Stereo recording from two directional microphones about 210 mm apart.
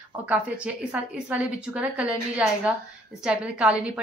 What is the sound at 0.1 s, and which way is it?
A woman's voice, 5° right (ahead or behind).